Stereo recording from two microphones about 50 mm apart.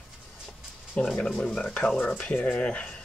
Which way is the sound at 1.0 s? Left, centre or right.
Centre.